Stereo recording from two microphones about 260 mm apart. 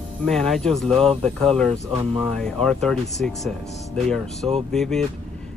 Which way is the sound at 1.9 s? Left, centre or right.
Right.